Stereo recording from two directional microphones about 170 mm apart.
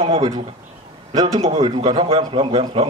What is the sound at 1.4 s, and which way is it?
A man's voice, 35° right (ahead or behind).